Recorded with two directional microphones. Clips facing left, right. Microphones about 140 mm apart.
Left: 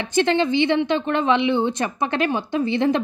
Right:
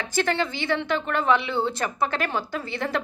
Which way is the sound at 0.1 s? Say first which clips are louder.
Left 7 dB; 20° left (ahead or behind).